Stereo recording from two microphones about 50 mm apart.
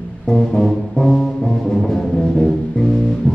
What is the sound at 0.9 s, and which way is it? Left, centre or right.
Brass instrument, centre.